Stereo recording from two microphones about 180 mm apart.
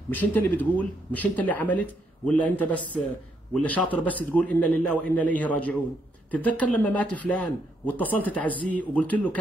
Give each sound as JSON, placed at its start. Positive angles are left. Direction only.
{"t": 0.1, "sound": "speech", "side_deg": 10}